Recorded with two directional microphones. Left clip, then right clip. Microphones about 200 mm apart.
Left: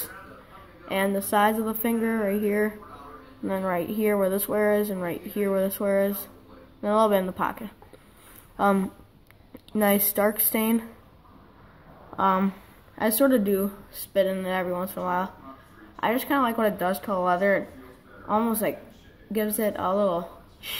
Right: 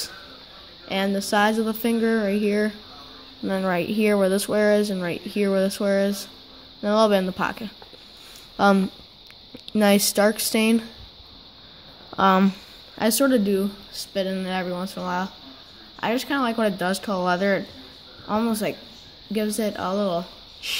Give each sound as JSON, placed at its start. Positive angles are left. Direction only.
{"t": 0.8, "sound": "speech", "side_deg": -40}
{"t": 3.4, "sound": "speech", "side_deg": -45}
{"t": 12.2, "sound": "a woman's voice", "side_deg": -50}